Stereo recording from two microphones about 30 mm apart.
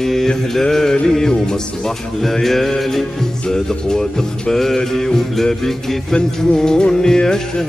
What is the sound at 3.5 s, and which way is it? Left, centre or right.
Music, centre.